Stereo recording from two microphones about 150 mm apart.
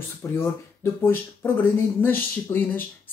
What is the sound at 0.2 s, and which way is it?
Speech, 20° left (ahead or behind).